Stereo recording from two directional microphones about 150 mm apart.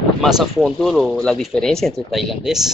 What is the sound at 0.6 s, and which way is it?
Speech, centre (ahead or behind).